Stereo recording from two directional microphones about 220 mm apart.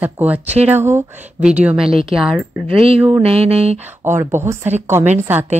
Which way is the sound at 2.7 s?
25° right (ahead or behind).